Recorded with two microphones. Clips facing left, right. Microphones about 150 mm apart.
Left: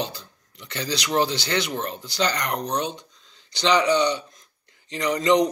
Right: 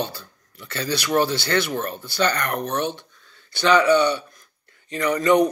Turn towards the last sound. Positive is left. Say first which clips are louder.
# right 2 dB
turn(degrees=20)  # may be behind; listen again after turning